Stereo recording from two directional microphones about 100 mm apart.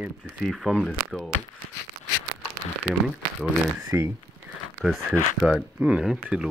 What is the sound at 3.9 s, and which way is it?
Speech, 25° right (ahead or behind).